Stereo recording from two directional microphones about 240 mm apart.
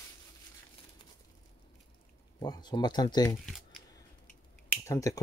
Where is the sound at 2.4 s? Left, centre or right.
Centre.